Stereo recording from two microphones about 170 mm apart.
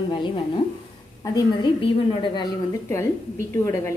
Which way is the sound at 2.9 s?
15° left (ahead or behind).